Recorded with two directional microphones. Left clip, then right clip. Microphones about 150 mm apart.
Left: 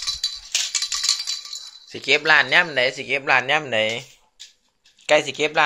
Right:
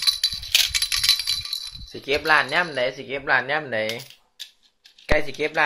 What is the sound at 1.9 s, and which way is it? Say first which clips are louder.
Speech: left 3 dB; 20° left (ahead or behind).